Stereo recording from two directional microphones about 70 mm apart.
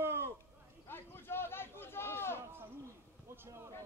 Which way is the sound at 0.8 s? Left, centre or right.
Left.